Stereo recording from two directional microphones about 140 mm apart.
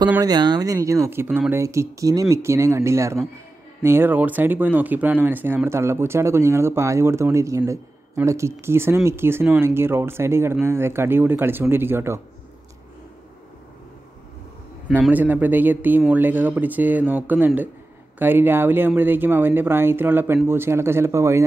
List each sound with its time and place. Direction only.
0.2 s speech: 30° right (ahead or behind)
14.9 s speech: 10° right (ahead or behind)